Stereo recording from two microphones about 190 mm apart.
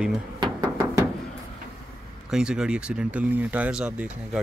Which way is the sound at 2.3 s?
5° right (ahead or behind).